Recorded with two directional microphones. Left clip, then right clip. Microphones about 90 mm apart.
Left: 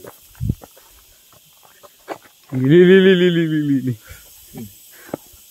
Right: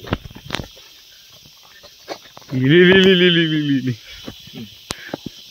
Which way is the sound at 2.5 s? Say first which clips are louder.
Left 1 dB; 5° left (ahead or behind).